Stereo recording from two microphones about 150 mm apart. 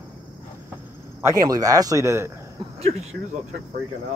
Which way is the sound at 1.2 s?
20° right (ahead or behind).